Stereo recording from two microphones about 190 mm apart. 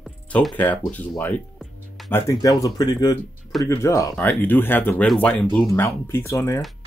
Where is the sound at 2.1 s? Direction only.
15° left (ahead or behind).